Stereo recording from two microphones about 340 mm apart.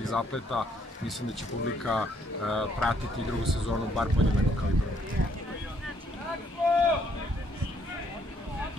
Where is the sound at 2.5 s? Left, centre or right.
Centre.